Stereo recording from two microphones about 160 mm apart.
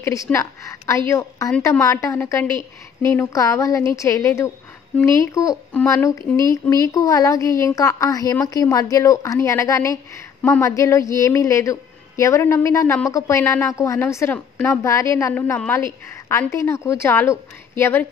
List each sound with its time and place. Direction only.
0.0 s a woman's voice: 20° left (ahead or behind)